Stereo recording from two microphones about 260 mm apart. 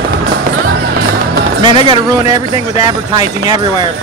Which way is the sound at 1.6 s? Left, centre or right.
Centre.